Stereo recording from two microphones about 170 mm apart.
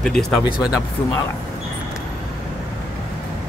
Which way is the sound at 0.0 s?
5° left (ahead or behind).